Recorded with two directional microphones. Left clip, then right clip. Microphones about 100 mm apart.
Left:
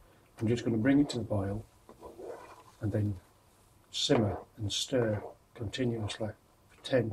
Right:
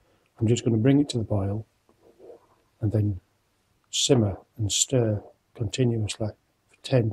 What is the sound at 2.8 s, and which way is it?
Speech, 30° right (ahead or behind).